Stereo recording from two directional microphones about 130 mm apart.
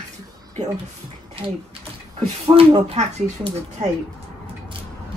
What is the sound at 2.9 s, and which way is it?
Speech, 60° right (ahead or behind).